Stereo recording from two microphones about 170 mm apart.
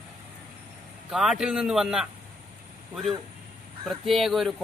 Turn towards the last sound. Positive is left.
turn(degrees=0)  # may be behind; listen again after turning